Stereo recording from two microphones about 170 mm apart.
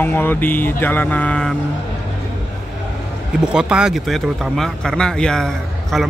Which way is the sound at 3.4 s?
5° right (ahead or behind).